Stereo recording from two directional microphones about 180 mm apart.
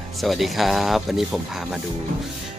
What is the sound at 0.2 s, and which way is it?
Speech, centre (ahead or behind).